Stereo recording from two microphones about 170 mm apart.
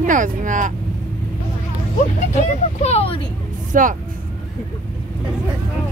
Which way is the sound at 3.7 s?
50° right (ahead or behind).